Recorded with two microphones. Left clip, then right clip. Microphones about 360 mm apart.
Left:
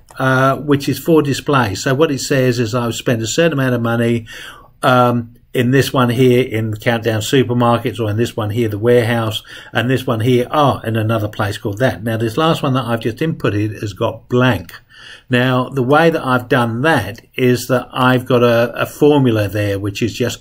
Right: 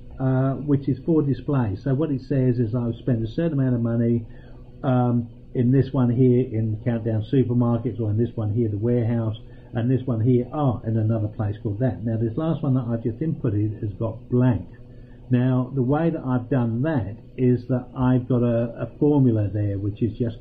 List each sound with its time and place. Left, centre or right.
0.2 s speech: centre
7.4 s speech: left
7.7 s speech: centre
10.0 s speech: left
11.3 s speech: centre
13.9 s speech: left
15.9 s speech: centre
18.9 s speech: left
19.2 s speech: centre